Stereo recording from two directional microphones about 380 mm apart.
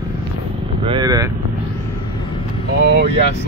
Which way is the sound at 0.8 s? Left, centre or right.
Centre.